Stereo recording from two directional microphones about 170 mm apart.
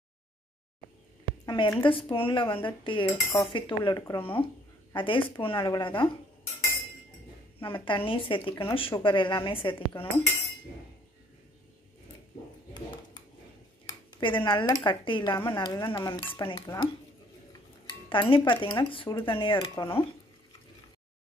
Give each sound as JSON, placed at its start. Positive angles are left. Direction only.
{"t": 1.4, "sound": "dishes", "side_deg": 25}
{"t": 4.2, "sound": "speech", "side_deg": 30}
{"t": 4.9, "sound": "dishes", "side_deg": 30}
{"t": 7.6, "sound": "speech", "side_deg": 30}
{"t": 14.2, "sound": "dishes", "side_deg": 30}
{"t": 18.1, "sound": "dishes", "side_deg": 30}
{"t": 19.7, "sound": "speech", "side_deg": 15}